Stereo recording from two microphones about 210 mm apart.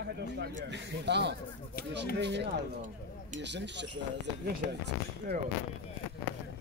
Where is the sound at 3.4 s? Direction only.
55° right (ahead or behind).